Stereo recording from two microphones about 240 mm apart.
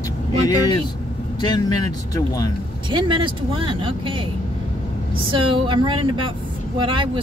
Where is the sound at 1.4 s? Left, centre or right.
Centre.